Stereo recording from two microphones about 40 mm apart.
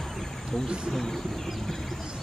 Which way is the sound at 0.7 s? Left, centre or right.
Right.